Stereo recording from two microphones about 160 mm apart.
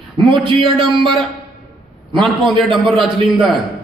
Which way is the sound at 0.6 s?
30° right (ahead or behind).